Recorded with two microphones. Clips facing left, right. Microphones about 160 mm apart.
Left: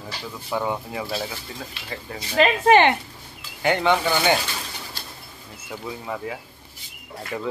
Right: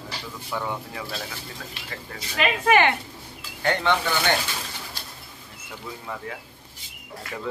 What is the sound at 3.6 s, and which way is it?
Speech, 10° left (ahead or behind).